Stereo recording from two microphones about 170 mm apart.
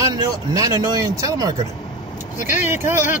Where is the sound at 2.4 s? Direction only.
50° left (ahead or behind).